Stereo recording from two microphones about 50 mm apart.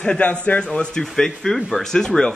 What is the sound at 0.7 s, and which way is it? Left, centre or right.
Speech, centre.